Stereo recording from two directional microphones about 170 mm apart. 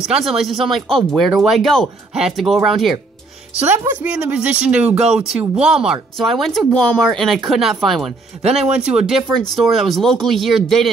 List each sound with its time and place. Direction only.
0.0 s speech: centre (ahead or behind)
3.6 s speech: 10° right (ahead or behind)